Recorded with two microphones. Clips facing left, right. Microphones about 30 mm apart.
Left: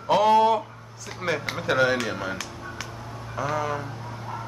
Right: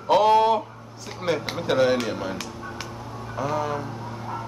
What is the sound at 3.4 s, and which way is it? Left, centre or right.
Speech, centre.